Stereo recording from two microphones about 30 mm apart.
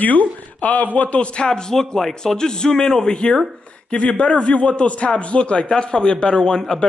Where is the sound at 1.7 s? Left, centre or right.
Centre.